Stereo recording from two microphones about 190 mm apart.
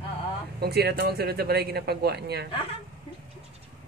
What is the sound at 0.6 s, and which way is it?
Speech, 55° right (ahead or behind).